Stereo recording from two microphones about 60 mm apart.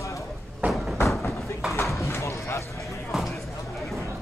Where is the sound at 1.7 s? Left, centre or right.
Left.